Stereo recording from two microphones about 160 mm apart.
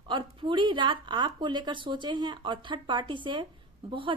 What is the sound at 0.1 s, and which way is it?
A woman's voice, 30° right (ahead or behind).